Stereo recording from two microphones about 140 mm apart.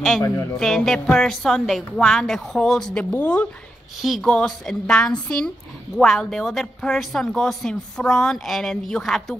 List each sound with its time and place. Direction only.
0.2 s a woman's voice: 20° left (ahead or behind)
0.6 s speech: centre (ahead or behind)
4.0 s speech: centre (ahead or behind)